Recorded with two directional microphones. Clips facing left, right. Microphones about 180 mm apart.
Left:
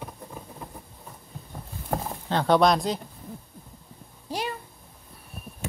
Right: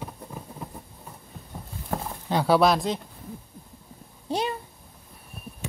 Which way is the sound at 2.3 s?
5° right (ahead or behind).